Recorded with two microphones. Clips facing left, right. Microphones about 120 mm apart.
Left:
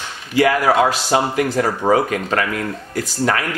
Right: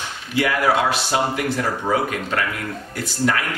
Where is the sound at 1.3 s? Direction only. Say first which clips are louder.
Left 4 dB; 45° left (ahead or behind).